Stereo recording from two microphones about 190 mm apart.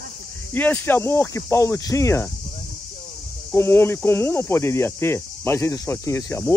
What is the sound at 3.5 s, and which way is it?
Speech, 10° left (ahead or behind).